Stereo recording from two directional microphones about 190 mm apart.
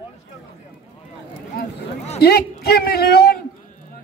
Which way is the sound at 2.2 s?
55° left (ahead or behind).